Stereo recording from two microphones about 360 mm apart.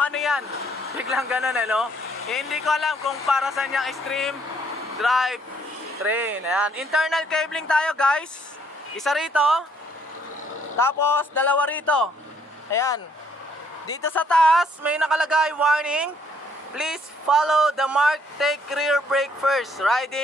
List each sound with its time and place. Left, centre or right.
0.0 s vehicle: centre
0.5 s a sound: centre
0.9 s speech: centre
10.8 s speech: centre